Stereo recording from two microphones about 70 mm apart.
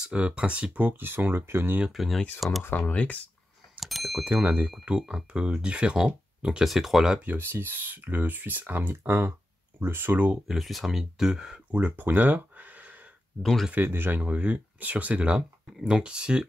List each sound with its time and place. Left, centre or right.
0.1 s speech: centre
0.7 s speech: right
1.9 s speech: centre
2.6 s speech: left
3.8 s bicycle bell: centre
4.2 s speech: right; by 7.2 s centre
7.2 s speech: right
10.5 s speech: centre
11.8 s a sound: right
13.4 s speech: centre
13.8 s speech: right; by 16.4 s centre